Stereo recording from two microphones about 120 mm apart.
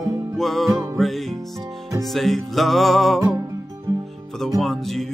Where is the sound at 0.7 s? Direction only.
25° right (ahead or behind).